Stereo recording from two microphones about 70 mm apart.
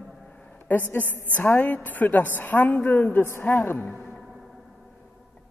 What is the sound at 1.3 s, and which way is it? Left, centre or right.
A woman's voice, left.